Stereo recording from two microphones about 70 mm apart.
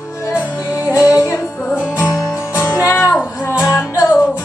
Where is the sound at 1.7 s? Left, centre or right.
Left.